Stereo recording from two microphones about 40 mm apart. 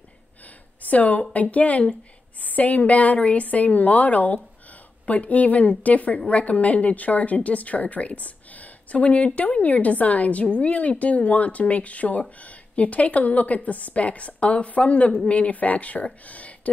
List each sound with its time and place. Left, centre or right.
0.8 s a woman's voice: left